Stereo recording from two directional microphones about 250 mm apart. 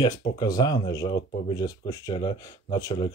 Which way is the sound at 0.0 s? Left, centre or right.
Centre.